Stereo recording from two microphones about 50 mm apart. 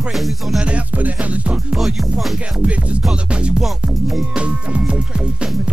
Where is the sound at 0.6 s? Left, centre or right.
Right.